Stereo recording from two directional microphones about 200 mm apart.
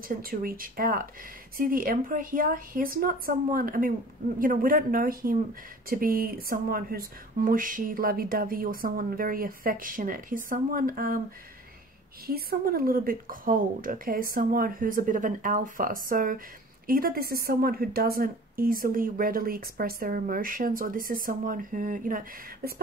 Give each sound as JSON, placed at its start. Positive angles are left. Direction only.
{"t": 0.1, "sound": "a woman's voice", "side_deg": -45}
{"t": 12.3, "sound": "a woman's voice", "side_deg": -50}